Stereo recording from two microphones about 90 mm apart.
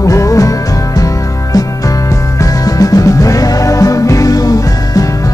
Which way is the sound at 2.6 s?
40° left (ahead or behind).